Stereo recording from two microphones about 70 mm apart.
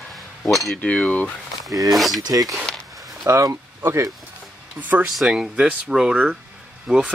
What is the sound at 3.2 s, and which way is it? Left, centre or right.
Speech, right.